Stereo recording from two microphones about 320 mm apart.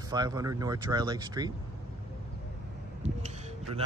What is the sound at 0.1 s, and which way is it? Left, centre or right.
Speech, centre.